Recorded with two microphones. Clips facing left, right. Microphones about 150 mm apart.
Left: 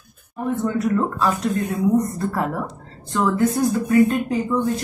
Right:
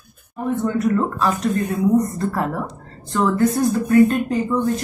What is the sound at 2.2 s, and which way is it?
Speech, 10° left (ahead or behind).